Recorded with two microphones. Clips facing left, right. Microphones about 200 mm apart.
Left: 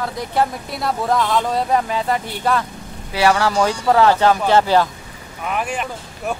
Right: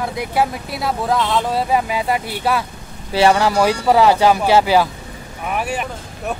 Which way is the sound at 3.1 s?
25° right (ahead or behind).